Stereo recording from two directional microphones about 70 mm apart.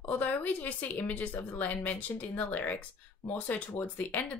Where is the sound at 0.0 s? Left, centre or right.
Left.